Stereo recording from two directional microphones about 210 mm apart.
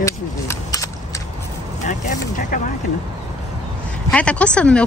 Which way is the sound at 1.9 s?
40° left (ahead or behind).